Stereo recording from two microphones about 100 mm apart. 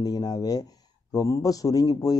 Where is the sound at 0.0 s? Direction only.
40° left (ahead or behind).